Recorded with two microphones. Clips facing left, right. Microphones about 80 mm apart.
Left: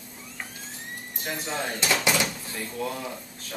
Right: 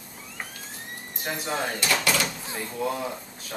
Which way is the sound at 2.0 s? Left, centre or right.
Centre.